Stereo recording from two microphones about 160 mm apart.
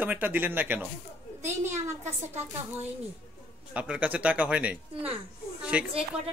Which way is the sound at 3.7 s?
10° right (ahead or behind).